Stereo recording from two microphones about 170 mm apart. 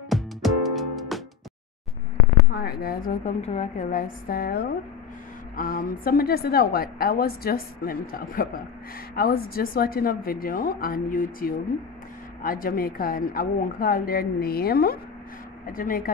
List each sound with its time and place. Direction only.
0.1 s music: centre (ahead or behind)
2.6 s a woman's voice: 60° left (ahead or behind)
3.3 s a woman's voice: 40° left (ahead or behind)
3.9 s a woman's voice: 60° left (ahead or behind)